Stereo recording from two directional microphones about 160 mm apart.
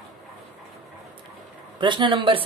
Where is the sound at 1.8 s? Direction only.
30° right (ahead or behind).